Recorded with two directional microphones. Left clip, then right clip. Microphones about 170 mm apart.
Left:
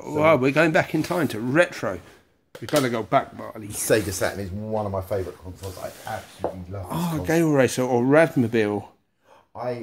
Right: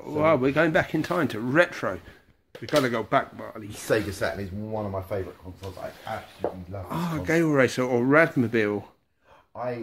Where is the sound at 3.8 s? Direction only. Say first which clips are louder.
Left 4 dB; 45° left (ahead or behind).